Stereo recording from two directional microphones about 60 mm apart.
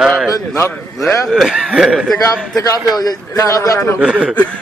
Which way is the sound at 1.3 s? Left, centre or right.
Centre.